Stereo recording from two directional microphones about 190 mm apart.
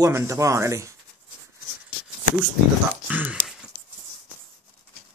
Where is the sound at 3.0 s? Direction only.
5° right (ahead or behind).